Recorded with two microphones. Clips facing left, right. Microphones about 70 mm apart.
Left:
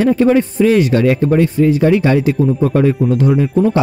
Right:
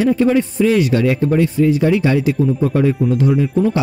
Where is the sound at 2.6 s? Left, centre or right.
Left.